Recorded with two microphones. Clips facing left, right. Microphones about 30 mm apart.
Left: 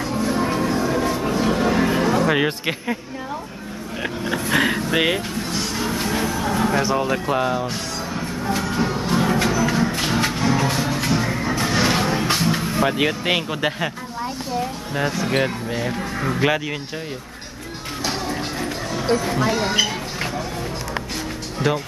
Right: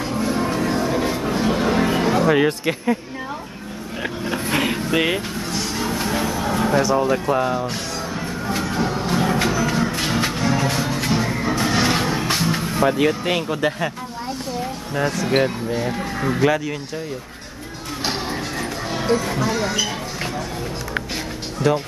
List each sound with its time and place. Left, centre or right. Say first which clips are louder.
0.0 s music: even; centre
0.7 s music: even; centre
1.4 s a sound: even; centre
2.2 s speech: right 2 dB; centre
4.0 s vehicle: even; centre
6.8 s speech: right 2 dB; left
8.5 s a sound: left 1 dB; centre
8.7 s music: right 1 dB; centre
12.9 s speech: right 1 dB; left
15.0 s speech: right 2 dB; centre
16.3 s speech: right 2 dB; left
19.1 s speech: even; centre
19.6 s speech: left 2 dB; left
21.7 s speech: right 3 dB; centre